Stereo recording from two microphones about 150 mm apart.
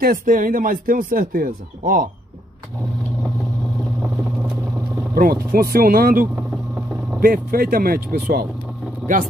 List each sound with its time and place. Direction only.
0.0 s speech: 65° right (ahead or behind)
5.1 s speech: 80° right